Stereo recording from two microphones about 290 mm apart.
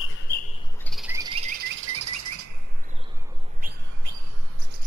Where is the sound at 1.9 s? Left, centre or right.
Right.